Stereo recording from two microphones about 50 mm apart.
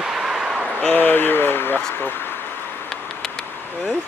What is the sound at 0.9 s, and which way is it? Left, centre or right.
Speech, left.